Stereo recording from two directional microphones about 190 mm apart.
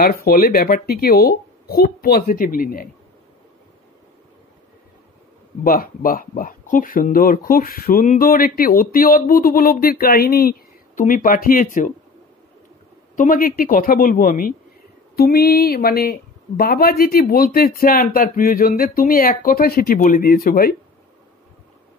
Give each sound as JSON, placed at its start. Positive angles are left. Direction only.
{"t": 0.0, "sound": "speech", "side_deg": 50}
{"t": 5.6, "sound": "speech", "side_deg": 50}
{"t": 13.1, "sound": "speech", "side_deg": 45}